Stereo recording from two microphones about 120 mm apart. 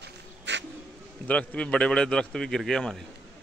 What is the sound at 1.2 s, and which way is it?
A man's voice, 10° left (ahead or behind).